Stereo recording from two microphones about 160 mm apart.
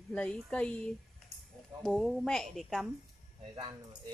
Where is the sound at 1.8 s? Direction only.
Centre (ahead or behind).